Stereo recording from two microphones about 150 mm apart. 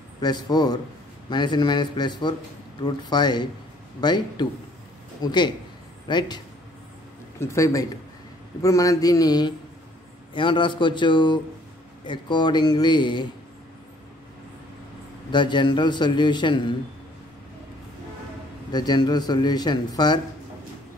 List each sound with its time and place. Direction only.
0.2 s a man's voice: 25° left (ahead or behind)
15.3 s a man's voice: 30° left (ahead or behind)
18.7 s a man's voice: 30° left (ahead or behind)